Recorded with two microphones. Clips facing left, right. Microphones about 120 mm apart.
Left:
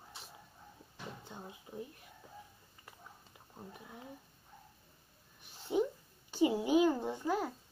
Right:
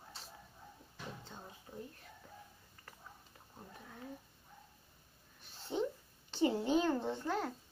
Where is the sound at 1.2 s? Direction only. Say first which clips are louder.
Left 3 dB; 15° left (ahead or behind).